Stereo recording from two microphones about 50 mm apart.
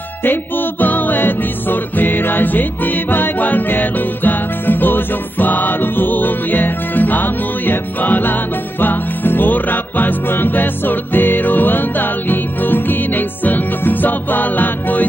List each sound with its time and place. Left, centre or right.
0.2 s music: left